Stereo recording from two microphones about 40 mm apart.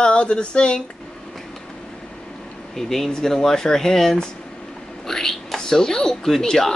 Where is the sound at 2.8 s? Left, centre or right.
Centre.